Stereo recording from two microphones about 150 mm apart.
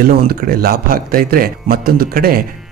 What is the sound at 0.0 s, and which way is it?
Speech, 80° right.